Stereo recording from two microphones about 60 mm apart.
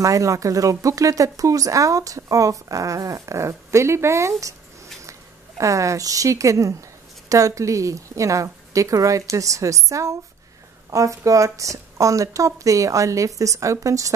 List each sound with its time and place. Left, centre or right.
0.0 s speech: right
5.6 s a woman's voice: right